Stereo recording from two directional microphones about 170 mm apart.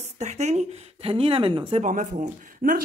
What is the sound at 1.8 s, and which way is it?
Speech, 45° right (ahead or behind).